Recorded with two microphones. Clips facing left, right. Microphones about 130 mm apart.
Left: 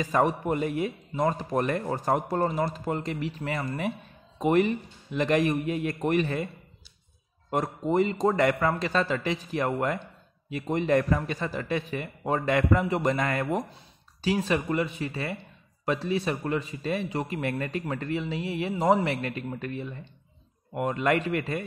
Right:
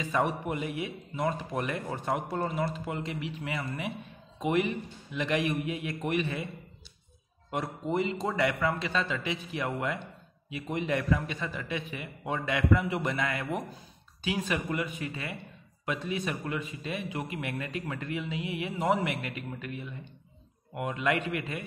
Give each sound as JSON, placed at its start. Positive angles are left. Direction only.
{"t": 0.0, "sound": "a man's voice", "side_deg": 40}
{"t": 7.5, "sound": "a man's voice", "side_deg": 45}